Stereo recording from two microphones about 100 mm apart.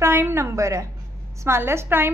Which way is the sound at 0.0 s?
25° right (ahead or behind).